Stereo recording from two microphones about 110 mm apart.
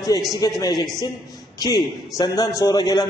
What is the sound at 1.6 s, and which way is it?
A man's voice, 40° left (ahead or behind).